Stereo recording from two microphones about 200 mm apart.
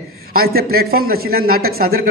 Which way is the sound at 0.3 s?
50° right (ahead or behind).